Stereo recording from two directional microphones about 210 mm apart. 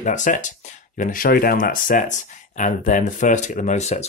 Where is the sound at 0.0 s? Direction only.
35° left (ahead or behind).